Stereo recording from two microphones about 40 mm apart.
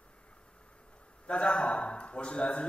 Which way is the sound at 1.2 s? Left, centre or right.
Left.